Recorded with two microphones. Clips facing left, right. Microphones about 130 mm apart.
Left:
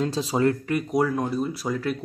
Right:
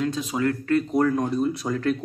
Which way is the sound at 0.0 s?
30° left (ahead or behind).